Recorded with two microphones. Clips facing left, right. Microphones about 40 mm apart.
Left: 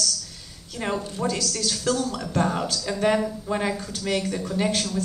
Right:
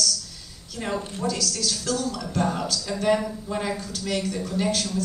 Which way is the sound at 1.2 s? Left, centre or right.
Centre.